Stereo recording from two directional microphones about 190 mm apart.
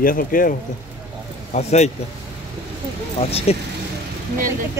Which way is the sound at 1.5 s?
35° left (ahead or behind).